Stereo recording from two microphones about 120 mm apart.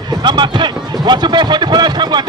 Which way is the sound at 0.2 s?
40° right (ahead or behind).